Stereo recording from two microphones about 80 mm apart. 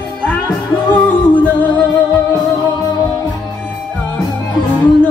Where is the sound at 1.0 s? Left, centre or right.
Centre.